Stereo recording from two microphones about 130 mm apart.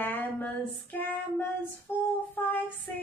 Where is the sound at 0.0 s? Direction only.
15° left (ahead or behind).